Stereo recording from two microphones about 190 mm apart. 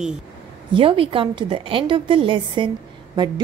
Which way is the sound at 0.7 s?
25° right (ahead or behind).